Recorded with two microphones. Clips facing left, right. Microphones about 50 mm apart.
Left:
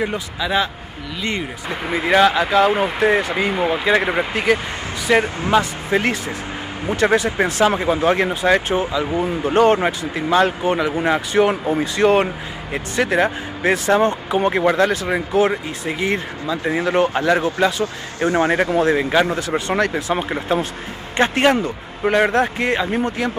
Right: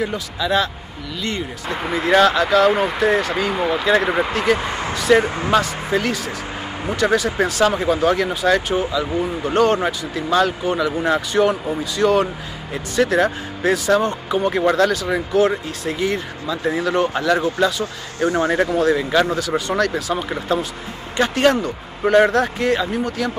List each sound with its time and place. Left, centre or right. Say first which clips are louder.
0.4 s speech: right 1 dB; centre
3.0 s speech: left 1 dB; left
5.6 s speech: left 1 dB; left
11.6 s speech: left 2 dB; left